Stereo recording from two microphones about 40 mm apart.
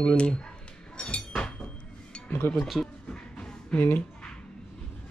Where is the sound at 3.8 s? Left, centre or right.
Left.